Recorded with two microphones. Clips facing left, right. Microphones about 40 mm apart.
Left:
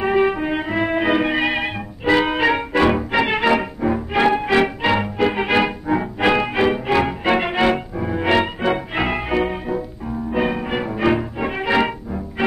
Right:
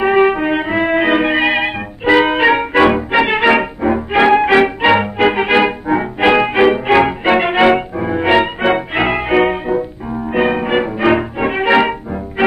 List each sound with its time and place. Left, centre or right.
0.0 s music: right
8.6 s music: right